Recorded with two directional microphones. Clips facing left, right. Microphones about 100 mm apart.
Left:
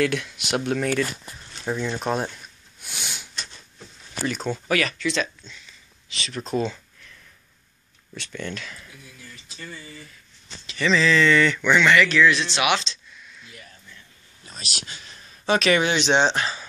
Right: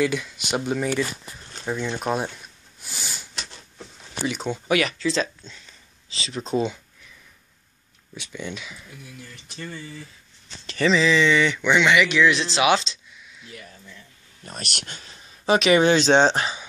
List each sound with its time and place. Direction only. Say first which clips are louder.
0.0 s speech: even; 5° right (ahead or behind)
2.8 s sniff: even; centre (ahead or behind)
4.3 s speech: right 1 dB; 15° right (ahead or behind)
8.1 s speech: left 1 dB; 10° right (ahead or behind)
10.9 s speech: even; 15° right (ahead or behind)
14.4 s speech: right 3 dB; 60° right (ahead or behind)
15.1 s a sound: right 2 dB; 25° right (ahead or behind)
15.8 s speech: right 4 dB; 35° right (ahead or behind)
16.3 s speech: right 1 dB; 15° right (ahead or behind)